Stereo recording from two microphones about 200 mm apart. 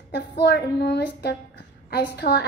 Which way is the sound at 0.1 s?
55° left (ahead or behind).